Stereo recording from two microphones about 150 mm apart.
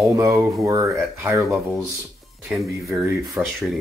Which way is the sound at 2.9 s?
15° right (ahead or behind).